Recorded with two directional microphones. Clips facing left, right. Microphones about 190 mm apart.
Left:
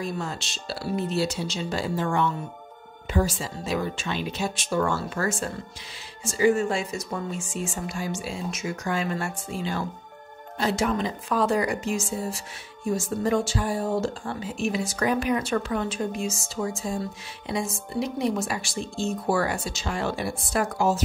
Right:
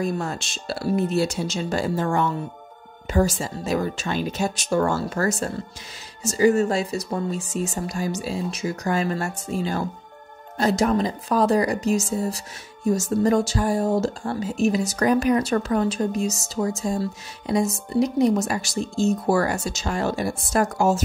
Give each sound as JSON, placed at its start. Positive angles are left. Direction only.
{"t": 0.0, "sound": "speech", "side_deg": -50}